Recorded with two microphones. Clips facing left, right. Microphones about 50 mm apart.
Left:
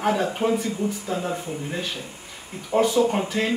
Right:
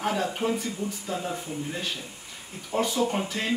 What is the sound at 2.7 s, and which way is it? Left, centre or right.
Speech, centre.